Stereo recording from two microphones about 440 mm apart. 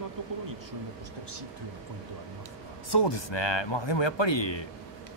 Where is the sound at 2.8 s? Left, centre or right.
Left.